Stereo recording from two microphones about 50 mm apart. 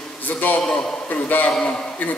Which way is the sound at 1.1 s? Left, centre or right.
Left.